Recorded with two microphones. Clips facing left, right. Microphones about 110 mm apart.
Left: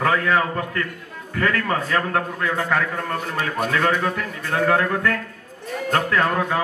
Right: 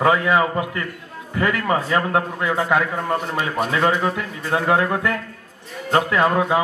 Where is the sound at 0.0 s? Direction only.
15° right (ahead or behind).